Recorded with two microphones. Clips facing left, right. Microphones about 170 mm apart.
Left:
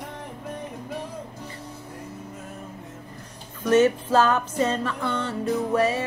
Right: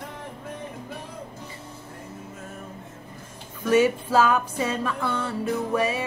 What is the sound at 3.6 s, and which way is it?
Music, 10° right (ahead or behind).